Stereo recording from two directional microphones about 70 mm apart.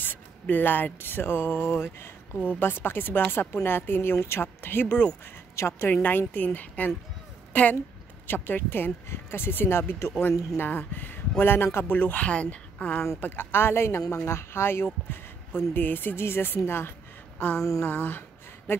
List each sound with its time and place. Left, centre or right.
0.0 s speech: left
5.6 s speech: left
6.0 s speech: left
10.6 s speech: left
13.2 s speech: left
17.6 s a sound: left
17.8 s speech: left